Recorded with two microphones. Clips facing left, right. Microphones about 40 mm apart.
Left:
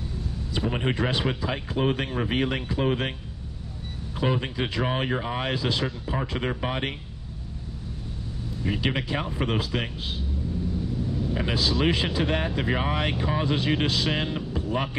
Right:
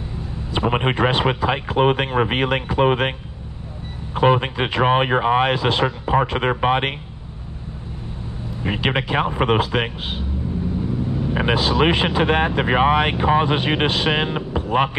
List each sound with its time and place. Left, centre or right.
0.5 s speech: right
8.6 s speech: right